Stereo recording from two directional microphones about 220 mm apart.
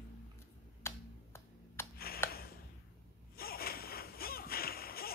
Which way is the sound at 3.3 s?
45° left (ahead or behind).